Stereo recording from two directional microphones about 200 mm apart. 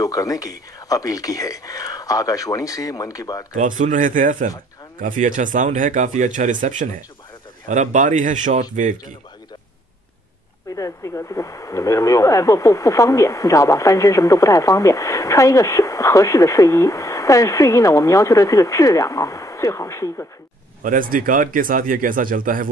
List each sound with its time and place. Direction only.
0.0 s speech: 15° left (ahead or behind)
3.5 s a man's voice: 40° right (ahead or behind)
10.7 s speech: 15° left (ahead or behind)
20.8 s speech: 45° right (ahead or behind)